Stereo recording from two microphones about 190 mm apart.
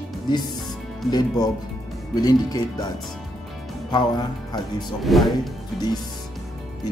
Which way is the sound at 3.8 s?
20° left (ahead or behind).